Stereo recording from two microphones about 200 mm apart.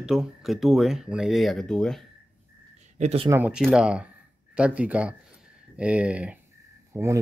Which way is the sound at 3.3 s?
5° right (ahead or behind).